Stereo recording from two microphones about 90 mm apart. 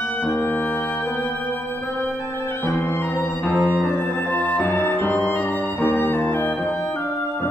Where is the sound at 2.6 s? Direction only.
25° left (ahead or behind).